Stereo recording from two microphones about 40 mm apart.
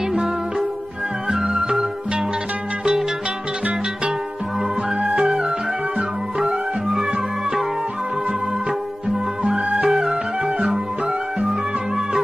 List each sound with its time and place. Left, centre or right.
0.1 s music: centre
4.9 s music: right
9.5 s music: right